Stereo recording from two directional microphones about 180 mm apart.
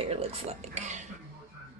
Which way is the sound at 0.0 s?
35° right (ahead or behind).